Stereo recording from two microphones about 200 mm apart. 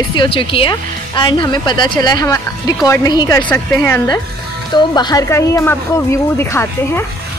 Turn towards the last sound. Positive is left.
turn(degrees=15)  # may be behind; listen again after turning